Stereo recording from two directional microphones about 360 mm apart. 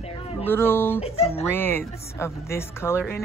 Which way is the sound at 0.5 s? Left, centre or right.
Centre.